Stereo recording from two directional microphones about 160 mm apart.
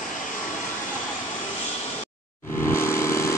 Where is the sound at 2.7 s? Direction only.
15° left (ahead or behind).